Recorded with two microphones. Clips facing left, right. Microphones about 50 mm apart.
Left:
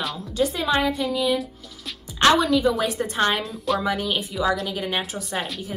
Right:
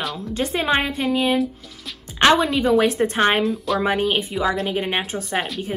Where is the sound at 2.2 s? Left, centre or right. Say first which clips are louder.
Right 1 dB; right.